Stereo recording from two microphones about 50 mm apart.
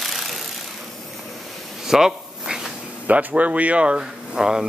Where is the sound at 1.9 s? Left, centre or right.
Centre.